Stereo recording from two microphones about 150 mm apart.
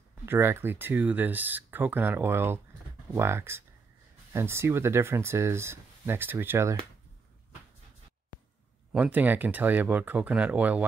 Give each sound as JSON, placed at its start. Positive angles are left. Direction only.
{"t": 0.2, "sound": "speech", "side_deg": -15}
{"t": 8.9, "sound": "speech", "side_deg": -10}